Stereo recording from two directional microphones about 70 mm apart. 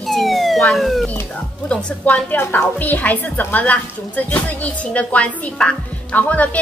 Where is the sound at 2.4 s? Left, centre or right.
Left.